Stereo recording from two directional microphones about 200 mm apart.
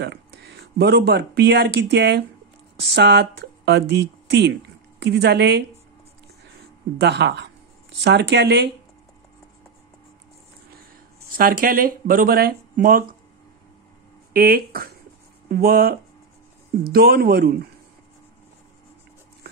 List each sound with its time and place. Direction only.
0.0 s speech: 55° right (ahead or behind)
7.0 s speech: 55° right (ahead or behind)
11.3 s speech: 45° right (ahead or behind)
14.3 s speech: 50° right (ahead or behind)